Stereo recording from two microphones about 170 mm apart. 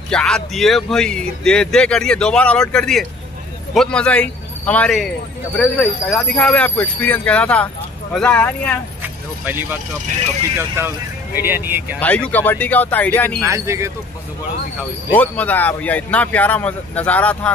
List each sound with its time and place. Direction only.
0.1 s a man's voice: 5° left (ahead or behind)
9.0 s speech: 10° right (ahead or behind)
10.8 s speech: 15° right (ahead or behind)
12.0 s a man's voice: 10° left (ahead or behind)
13.4 s speech: 15° right (ahead or behind)
15.1 s a man's voice: 10° left (ahead or behind)